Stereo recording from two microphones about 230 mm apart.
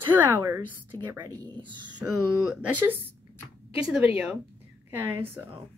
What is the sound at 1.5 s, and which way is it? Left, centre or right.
Speech, right.